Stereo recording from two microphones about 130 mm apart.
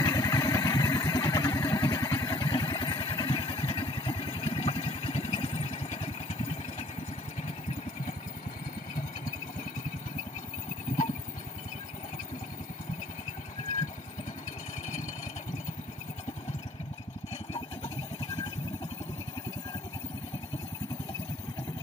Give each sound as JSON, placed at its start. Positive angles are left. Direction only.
{"t": 0.0, "sound": "vehicle", "side_deg": 30}